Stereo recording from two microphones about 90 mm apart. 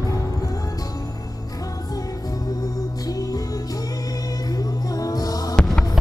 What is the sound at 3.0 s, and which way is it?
Music, 45° left (ahead or behind).